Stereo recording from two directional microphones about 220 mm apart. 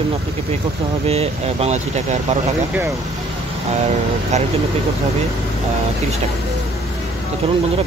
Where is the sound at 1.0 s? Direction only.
30° right (ahead or behind).